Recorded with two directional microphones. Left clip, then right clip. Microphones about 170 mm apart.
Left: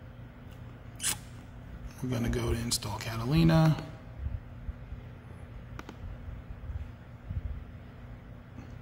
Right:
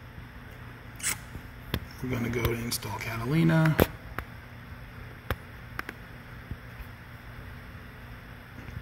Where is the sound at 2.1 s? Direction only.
20° left (ahead or behind).